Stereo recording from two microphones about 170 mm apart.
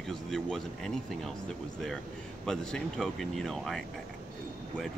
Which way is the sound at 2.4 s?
5° left (ahead or behind).